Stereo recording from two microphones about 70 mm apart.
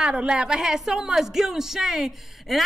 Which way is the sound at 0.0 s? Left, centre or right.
Centre.